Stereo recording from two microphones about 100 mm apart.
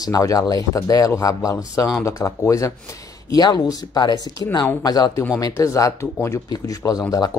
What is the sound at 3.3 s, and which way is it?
Speech, 40° left (ahead or behind).